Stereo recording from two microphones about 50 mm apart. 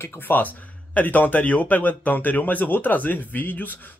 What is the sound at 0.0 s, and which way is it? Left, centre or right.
Speech, left.